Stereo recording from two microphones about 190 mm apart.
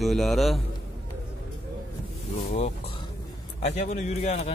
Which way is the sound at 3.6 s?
40° left (ahead or behind).